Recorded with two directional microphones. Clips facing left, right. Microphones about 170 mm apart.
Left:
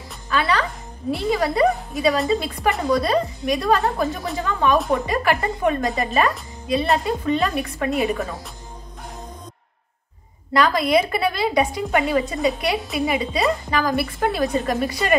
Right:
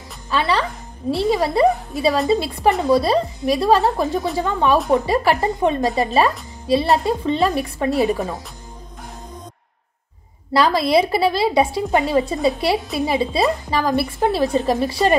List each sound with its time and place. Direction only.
0.3 s a woman's voice: 30° right (ahead or behind)
10.5 s a woman's voice: 30° right (ahead or behind)